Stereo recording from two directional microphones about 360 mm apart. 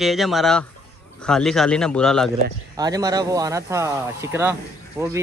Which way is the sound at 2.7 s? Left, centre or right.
Centre.